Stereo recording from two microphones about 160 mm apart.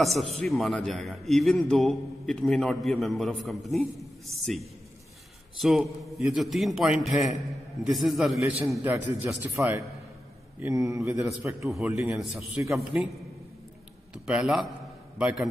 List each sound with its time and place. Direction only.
0.0 s a man's voice: centre (ahead or behind); by 11.7 s 20° right (ahead or behind)
11.7 s a man's voice: 5° right (ahead or behind)
14.1 s speech: 5° right (ahead or behind)